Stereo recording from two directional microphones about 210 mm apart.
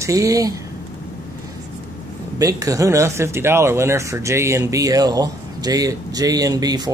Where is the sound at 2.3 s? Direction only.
15° right (ahead or behind).